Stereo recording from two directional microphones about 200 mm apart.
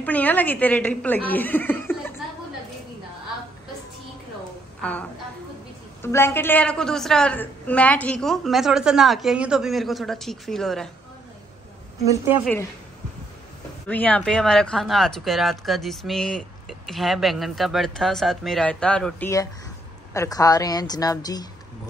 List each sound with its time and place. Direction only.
0.0 s speech: 10° left (ahead or behind)
6.0 s speech: 10° left (ahead or behind)
13.8 s a woman's voice: 10° left (ahead or behind)